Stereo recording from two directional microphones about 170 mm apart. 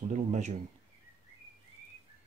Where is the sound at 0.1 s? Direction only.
45° right (ahead or behind).